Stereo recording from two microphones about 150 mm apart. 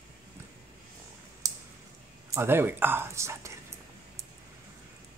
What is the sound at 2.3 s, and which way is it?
Speech, 15° right (ahead or behind).